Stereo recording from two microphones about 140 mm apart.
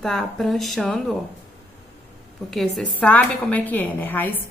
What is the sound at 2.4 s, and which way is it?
A woman's voice, centre (ahead or behind).